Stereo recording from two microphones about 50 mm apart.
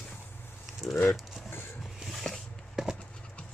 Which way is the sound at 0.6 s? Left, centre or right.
Centre.